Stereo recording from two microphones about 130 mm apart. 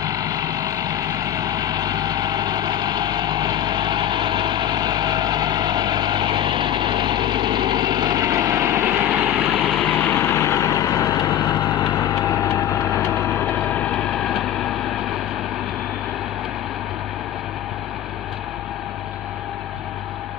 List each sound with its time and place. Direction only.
0.0 s vehicle: 30° right (ahead or behind); by 9.7 s 10° right (ahead or behind)
10.0 s vehicle: 20° left (ahead or behind)
11.1 s vehicle: 35° left (ahead or behind)
12.0 s vehicle: 20° left (ahead or behind)
13.7 s a sound: 10° left (ahead or behind)